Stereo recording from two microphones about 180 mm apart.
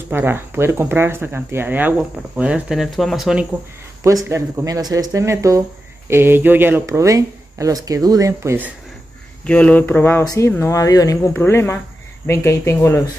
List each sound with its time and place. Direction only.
0.1 s speech: 10° right (ahead or behind)
4.0 s speech: 15° right (ahead or behind)
9.5 s speech: 5° left (ahead or behind)